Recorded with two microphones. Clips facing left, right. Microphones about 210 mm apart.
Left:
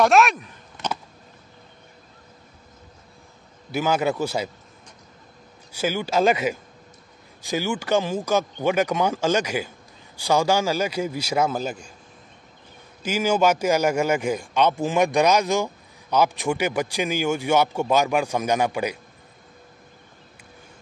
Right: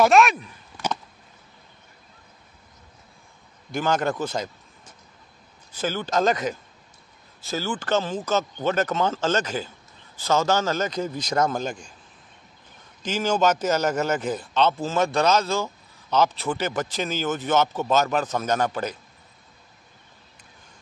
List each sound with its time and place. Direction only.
0.0 s speech: centre (ahead or behind)
0.8 s a sound: 20° left (ahead or behind)
3.7 s a man's voice: 10° left (ahead or behind)
5.7 s a man's voice: 10° left (ahead or behind)
13.0 s a man's voice: 10° left (ahead or behind)